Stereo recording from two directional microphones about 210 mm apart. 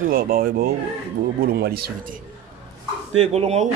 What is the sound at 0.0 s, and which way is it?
Speech, 45° right (ahead or behind).